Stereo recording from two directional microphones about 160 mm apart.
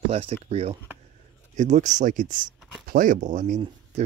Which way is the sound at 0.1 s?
40° right (ahead or behind).